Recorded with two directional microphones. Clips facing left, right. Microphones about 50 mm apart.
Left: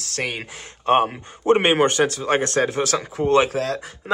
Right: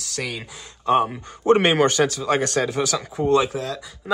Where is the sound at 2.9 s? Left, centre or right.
Left.